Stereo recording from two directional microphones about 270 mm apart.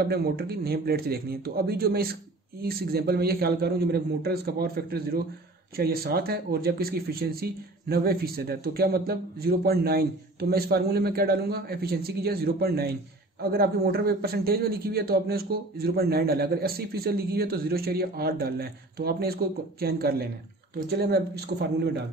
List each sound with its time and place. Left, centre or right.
0.0 s a man's voice: right